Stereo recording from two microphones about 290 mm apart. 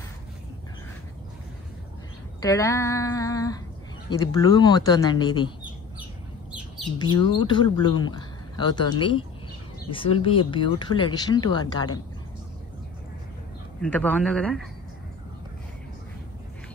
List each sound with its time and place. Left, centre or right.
2.4 s speech: centre
7.0 s speech: centre
13.7 s speech: centre